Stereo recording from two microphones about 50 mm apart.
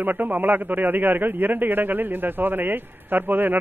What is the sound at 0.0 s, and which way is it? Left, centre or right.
Speech, right.